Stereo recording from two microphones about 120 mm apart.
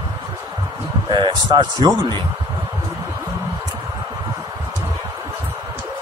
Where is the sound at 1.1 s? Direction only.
40° right (ahead or behind).